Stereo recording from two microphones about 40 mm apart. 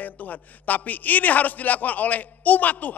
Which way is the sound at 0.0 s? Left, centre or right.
Left.